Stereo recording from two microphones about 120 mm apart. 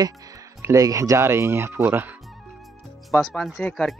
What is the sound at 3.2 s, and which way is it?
Speech, centre (ahead or behind).